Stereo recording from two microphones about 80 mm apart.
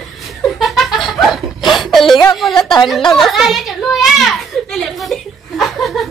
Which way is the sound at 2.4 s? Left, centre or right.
Centre.